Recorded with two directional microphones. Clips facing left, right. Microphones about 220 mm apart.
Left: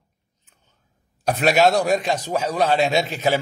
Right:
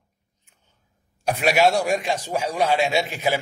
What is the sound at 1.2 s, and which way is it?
A man's voice, 10° right (ahead or behind).